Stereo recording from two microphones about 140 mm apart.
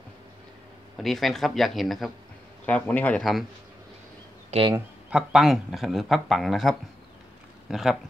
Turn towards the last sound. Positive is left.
turn(degrees=-5)  # may be behind; listen again after turning